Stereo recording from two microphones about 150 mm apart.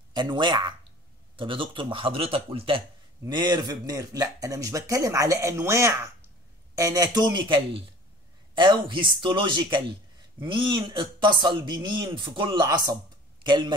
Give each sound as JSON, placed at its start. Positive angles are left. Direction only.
{"t": 0.1, "sound": "speech", "side_deg": -30}
{"t": 3.3, "sound": "speech", "side_deg": -30}